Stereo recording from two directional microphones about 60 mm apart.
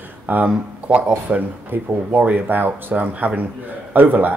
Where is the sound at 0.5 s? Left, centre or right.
Right.